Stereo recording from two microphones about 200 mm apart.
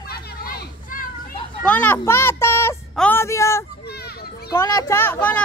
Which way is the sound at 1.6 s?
5° left (ahead or behind).